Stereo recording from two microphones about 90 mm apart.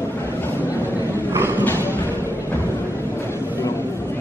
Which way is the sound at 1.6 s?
25° left (ahead or behind).